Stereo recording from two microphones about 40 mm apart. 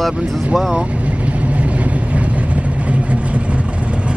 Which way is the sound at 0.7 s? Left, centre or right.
Right.